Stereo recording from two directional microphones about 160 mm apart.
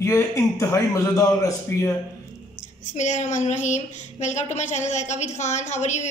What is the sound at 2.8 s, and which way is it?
A woman's voice, 50° left (ahead or behind).